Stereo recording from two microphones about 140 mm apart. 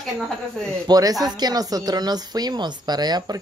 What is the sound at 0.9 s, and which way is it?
Speech, 25° right (ahead or behind).